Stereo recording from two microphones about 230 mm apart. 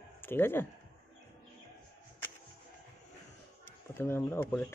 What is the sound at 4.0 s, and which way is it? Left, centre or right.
Speech, centre.